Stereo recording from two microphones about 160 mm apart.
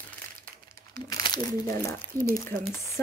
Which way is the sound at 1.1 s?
25° left (ahead or behind).